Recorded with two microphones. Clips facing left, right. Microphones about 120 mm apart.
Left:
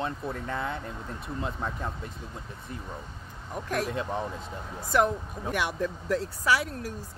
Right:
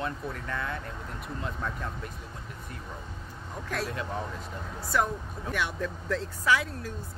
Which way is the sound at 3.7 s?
15° left (ahead or behind).